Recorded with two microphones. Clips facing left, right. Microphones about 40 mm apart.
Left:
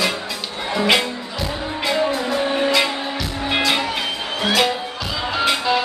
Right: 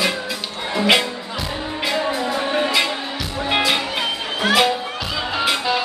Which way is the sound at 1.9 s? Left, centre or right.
Centre.